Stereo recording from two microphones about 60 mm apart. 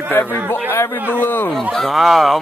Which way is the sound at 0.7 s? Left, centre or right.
Left.